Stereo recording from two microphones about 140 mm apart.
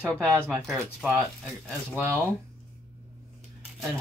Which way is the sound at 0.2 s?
15° right (ahead or behind).